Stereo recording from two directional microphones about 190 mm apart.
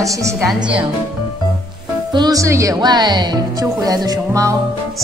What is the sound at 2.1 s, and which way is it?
Speech, 20° right (ahead or behind).